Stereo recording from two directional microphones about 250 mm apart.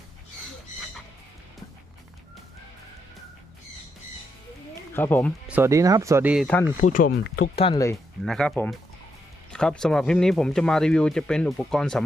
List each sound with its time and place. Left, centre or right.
4.9 s speech: centre
5.5 s speech: centre
6.8 s speech: left; by 8.0 s centre
8.2 s speech: centre